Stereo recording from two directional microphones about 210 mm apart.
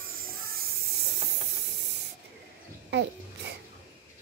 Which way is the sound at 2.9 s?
55° right (ahead or behind).